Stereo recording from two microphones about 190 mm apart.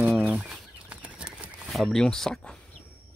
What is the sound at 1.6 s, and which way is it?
Speech, centre (ahead or behind).